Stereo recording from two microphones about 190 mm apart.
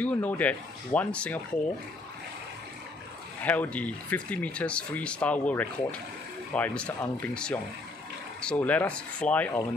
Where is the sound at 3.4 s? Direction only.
10° left (ahead or behind).